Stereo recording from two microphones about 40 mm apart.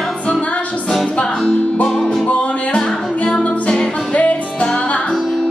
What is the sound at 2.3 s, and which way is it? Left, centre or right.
Music, left.